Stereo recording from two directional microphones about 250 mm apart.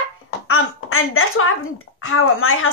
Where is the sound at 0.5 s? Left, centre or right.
Left.